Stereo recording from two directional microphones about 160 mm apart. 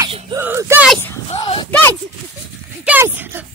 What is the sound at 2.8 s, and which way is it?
Speech, 10° right (ahead or behind).